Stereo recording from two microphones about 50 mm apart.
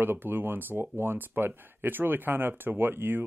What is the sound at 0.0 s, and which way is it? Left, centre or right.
Speech, right.